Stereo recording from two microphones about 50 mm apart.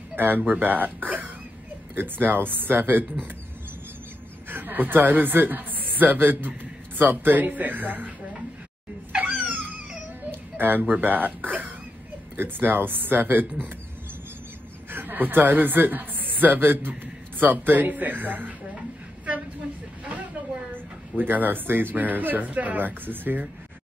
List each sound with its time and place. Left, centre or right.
0.1 s speech: right
4.5 s a man's voice: right
9.2 s a sound: right
10.8 s speech: right
14.9 s a man's voice: right
21.2 s speech: right